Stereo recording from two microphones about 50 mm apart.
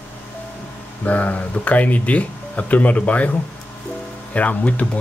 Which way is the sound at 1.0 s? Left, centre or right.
Left.